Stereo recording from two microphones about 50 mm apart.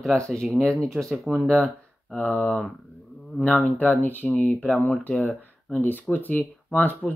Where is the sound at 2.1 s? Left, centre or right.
Left.